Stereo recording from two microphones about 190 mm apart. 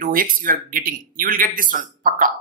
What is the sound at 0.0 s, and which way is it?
Speech, 45° right (ahead or behind).